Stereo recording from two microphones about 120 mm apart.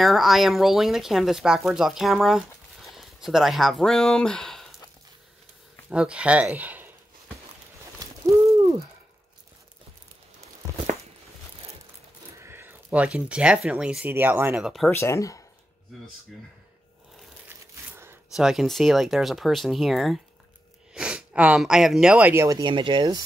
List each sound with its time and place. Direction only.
0.0 s speech: centre (ahead or behind)
5.9 s speech: 10° right (ahead or behind)
12.4 s speech: 20° right (ahead or behind)
14.5 s speech: 5° right (ahead or behind)
14.9 s speech: 20° left (ahead or behind)
17.5 s a sound: 20° right (ahead or behind)
18.3 s speech: centre (ahead or behind)
22.3 s speech: 20° right (ahead or behind)
22.6 s speech: 45° right (ahead or behind)